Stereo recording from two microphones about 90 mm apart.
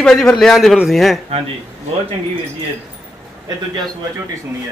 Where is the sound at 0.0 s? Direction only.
5° left (ahead or behind).